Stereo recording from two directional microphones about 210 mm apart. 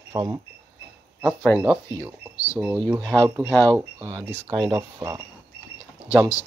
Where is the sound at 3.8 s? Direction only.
20° right (ahead or behind).